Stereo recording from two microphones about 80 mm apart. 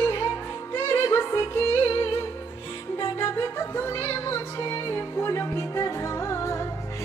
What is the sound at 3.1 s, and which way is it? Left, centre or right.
Music, left.